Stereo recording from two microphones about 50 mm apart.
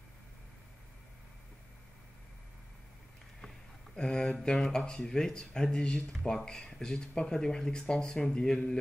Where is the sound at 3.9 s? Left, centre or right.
Centre.